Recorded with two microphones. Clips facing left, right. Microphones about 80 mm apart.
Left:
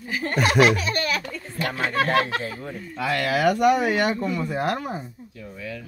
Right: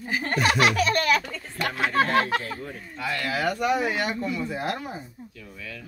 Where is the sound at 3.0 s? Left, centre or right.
Left.